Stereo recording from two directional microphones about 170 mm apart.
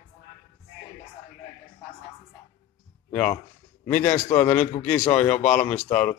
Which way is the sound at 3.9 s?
10° left (ahead or behind).